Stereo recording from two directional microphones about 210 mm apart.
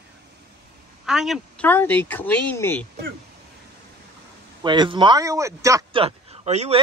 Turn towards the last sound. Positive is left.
turn(degrees=-30)  # may be behind; listen again after turning